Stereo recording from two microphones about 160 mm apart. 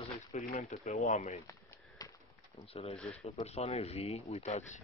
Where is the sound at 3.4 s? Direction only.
40° left (ahead or behind).